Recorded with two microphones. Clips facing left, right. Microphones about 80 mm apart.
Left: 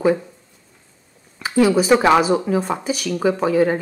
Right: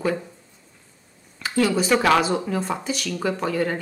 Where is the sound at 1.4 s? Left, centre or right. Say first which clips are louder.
Left 5 dB; centre.